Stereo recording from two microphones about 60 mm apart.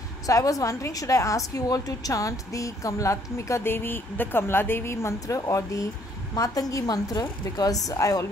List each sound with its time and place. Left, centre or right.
0.3 s a woman's voice: left
3.6 s a woman's voice: left
5.2 s speech: left
6.3 s a woman's voice: left